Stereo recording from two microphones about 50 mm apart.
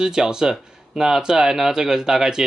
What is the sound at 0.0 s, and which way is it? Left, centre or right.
Speech, centre.